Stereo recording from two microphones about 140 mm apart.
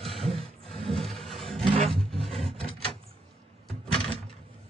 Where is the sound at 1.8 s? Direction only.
45° right (ahead or behind).